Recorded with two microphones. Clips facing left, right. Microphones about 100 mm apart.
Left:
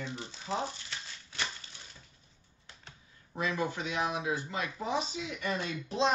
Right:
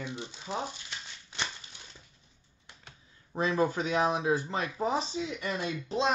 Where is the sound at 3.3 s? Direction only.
35° right (ahead or behind).